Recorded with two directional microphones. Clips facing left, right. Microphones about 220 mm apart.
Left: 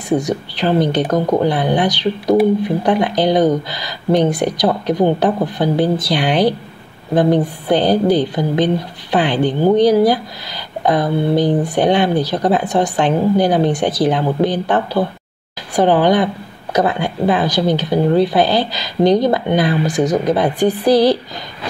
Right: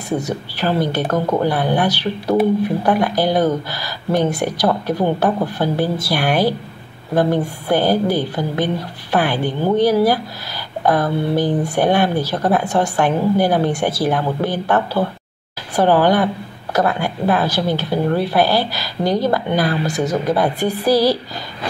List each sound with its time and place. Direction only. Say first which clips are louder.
0.1 s speech: left 5 dB; 15° left (ahead or behind)